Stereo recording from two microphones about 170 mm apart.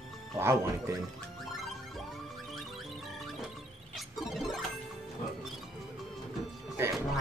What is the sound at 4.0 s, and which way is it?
Music, centre (ahead or behind).